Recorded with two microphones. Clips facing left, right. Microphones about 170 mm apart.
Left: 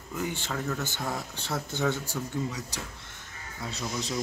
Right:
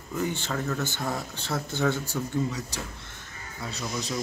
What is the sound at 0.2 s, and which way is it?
Speech, 10° left (ahead or behind).